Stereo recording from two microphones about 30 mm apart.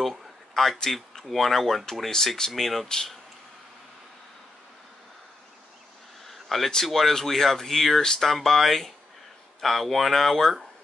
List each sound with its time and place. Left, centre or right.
0.6 s speech: centre
1.3 s speech: centre
6.2 s a sound: centre
6.8 s speech: centre